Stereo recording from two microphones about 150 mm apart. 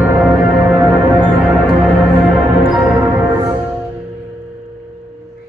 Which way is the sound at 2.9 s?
10° right (ahead or behind).